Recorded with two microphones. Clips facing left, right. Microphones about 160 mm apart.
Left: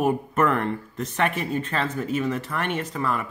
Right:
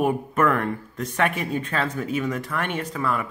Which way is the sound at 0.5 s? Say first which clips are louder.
Even; 10° right (ahead or behind).